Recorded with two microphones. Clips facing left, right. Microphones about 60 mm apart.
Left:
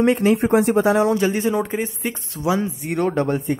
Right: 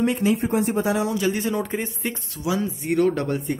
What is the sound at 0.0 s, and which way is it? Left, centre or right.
Speech, left.